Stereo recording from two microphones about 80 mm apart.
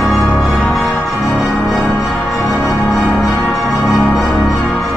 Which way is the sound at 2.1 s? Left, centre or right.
Centre.